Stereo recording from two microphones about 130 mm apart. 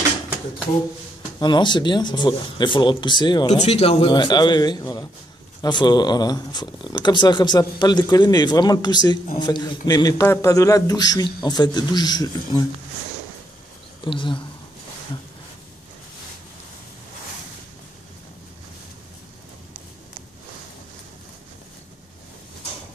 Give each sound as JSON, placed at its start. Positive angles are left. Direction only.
{"t": 1.4, "sound": "speech", "side_deg": 35}
{"t": 3.4, "sound": "speech", "side_deg": 55}
{"t": 4.1, "sound": "speech", "side_deg": 35}
{"t": 14.0, "sound": "speech", "side_deg": 40}